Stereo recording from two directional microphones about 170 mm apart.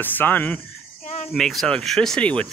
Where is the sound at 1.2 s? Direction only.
Centre (ahead or behind).